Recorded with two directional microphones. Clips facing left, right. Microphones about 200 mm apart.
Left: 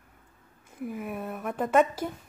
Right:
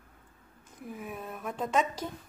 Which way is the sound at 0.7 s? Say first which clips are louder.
Left 6 dB; 5° left (ahead or behind).